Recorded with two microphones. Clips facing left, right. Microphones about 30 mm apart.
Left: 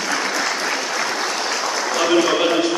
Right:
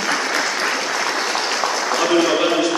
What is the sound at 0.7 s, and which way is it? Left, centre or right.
Applause, centre.